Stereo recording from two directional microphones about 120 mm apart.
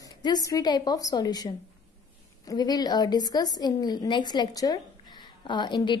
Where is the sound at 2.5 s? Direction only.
35° left (ahead or behind).